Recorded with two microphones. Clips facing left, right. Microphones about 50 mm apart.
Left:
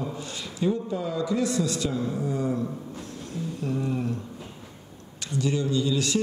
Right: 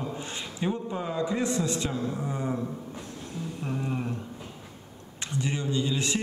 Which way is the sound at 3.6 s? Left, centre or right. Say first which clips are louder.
Left 3 dB; right.